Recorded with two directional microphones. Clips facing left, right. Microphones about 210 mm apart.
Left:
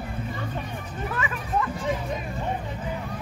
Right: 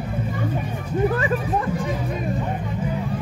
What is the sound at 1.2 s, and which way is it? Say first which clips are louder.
Hubbub: right 5 dB; 35° right (ahead or behind).